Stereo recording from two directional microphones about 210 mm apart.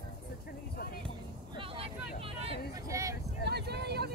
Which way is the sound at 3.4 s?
50° right (ahead or behind).